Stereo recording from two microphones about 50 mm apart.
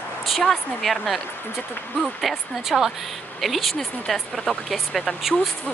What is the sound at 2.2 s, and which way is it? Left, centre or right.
Speech, centre.